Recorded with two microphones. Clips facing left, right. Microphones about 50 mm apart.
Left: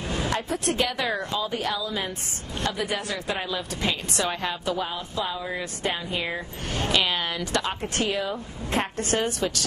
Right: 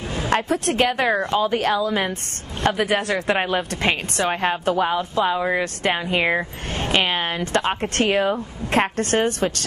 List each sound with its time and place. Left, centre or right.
0.3 s a woman's voice: right
3.3 s speech: right
4.2 s speech: right
6.8 s speech: right